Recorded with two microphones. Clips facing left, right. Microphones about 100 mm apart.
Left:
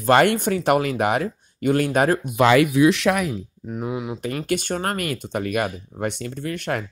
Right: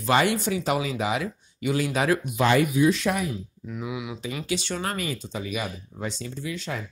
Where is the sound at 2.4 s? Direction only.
90° left.